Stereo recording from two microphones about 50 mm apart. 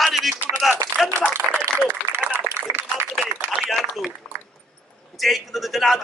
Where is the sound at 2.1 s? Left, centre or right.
Right.